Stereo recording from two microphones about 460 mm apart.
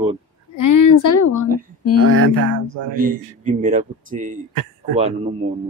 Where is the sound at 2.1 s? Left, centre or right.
Right.